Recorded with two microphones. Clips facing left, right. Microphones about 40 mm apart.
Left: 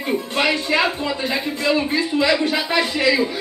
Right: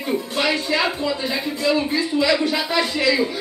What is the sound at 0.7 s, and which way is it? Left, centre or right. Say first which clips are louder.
Speech: left 1 dB; left.